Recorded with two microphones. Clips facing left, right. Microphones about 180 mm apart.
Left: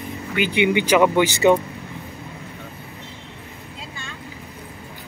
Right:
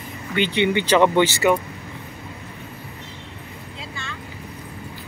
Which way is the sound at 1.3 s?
20° left (ahead or behind).